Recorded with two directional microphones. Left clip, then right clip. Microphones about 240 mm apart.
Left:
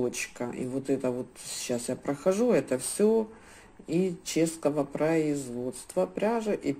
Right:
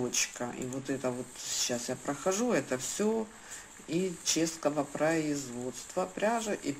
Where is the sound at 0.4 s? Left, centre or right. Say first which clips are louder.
Left 4 dB; left.